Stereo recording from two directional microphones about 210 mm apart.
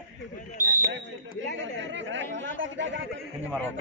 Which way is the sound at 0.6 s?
40° right (ahead or behind).